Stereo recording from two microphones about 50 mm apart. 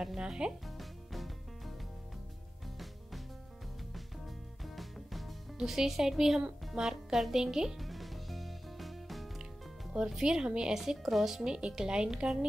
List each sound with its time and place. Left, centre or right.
0.2 s speech: centre
0.7 s music: centre
4.6 s music: centre
6.6 s speech: centre
7.8 s music: centre
9.9 s speech: centre
10.7 s speech: centre
11.4 s speech: centre